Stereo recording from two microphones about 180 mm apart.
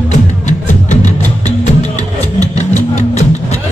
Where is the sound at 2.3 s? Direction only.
40° left (ahead or behind).